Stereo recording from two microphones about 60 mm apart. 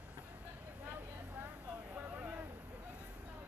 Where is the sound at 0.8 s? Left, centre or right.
Right.